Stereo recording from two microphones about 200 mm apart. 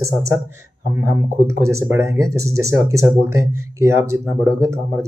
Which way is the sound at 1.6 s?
15° right (ahead or behind).